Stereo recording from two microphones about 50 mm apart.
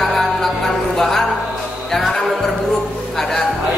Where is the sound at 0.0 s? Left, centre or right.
Centre.